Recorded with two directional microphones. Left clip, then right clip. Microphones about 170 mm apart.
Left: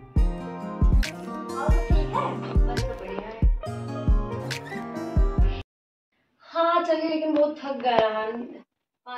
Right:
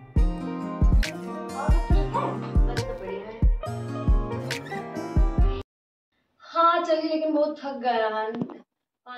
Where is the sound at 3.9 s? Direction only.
10° left (ahead or behind).